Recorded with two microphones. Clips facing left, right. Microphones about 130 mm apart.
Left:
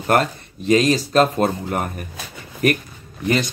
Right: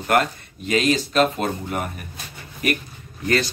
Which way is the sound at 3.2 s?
15° left (ahead or behind).